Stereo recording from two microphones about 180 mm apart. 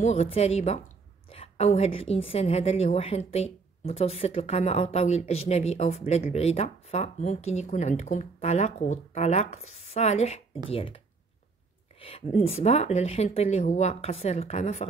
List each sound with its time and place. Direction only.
0.0 s a woman's voice: 40° left (ahead or behind)
12.0 s a woman's voice: 40° left (ahead or behind)